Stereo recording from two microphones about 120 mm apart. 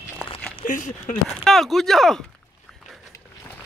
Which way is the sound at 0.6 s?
90° left.